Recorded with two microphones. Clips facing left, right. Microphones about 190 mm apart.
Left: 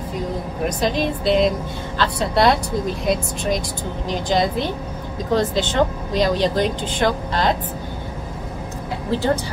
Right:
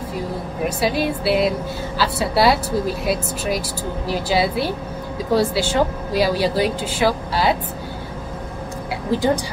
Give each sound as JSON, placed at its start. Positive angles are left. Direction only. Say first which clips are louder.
{"t": 0.7, "sound": "speech", "louder": "right 1 dB", "side_deg": -5}
{"t": 9.1, "sound": "speech", "louder": "right 1 dB", "side_deg": -15}